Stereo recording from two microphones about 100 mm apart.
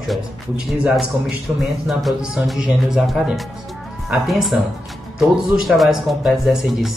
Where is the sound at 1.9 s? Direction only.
Centre (ahead or behind).